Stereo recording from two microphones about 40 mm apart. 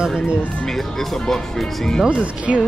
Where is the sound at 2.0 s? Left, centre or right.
Right.